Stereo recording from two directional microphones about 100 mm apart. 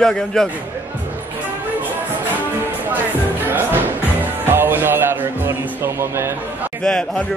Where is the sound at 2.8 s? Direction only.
20° right (ahead or behind).